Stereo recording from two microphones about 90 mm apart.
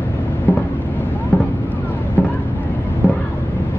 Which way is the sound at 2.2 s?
25° left (ahead or behind).